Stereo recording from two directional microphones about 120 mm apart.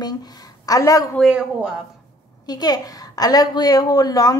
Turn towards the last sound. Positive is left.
turn(degrees=30)  # may be behind; listen again after turning